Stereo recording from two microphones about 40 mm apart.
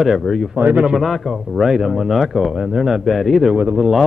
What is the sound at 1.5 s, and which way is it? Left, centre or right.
Speech, centre.